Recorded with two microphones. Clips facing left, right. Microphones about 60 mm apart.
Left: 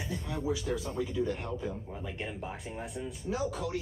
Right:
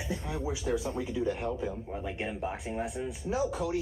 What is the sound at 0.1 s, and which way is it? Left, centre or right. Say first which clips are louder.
Speech: left 1 dB; centre.